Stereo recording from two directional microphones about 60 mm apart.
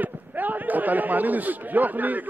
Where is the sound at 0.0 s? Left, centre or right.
Right.